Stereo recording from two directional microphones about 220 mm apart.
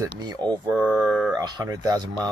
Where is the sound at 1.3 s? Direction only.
15° right (ahead or behind).